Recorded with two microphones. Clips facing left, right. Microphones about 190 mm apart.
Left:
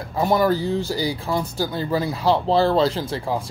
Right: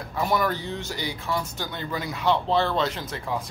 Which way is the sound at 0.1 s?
30° left (ahead or behind).